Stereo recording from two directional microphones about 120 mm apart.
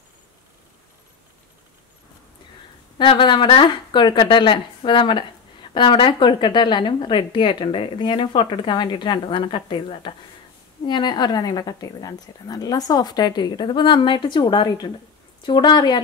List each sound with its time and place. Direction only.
3.0 s a woman's voice: 45° left (ahead or behind)